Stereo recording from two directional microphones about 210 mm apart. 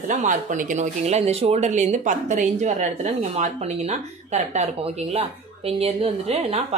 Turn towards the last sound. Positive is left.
turn(degrees=-30)  # may be behind; listen again after turning